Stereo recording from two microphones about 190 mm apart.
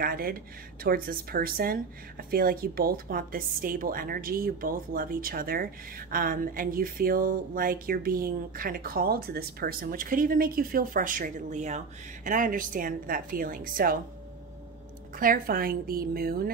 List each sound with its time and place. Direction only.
0.0 s speech: 50° right (ahead or behind)
15.1 s speech: 45° right (ahead or behind)